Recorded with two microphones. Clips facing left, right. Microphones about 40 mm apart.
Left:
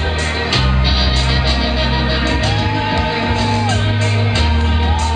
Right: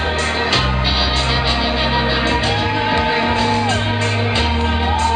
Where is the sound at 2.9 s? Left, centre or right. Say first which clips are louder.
Right 1 dB; centre.